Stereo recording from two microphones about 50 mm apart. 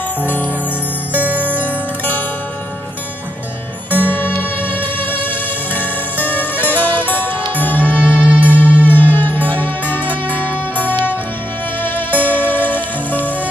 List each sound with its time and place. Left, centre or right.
1.1 s music: right
1.6 s zither: left
3.9 s music: left
8.0 s music: right
8.6 s music: left
12.2 s music: left